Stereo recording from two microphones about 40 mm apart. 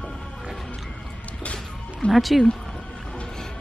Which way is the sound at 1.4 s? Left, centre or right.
Left.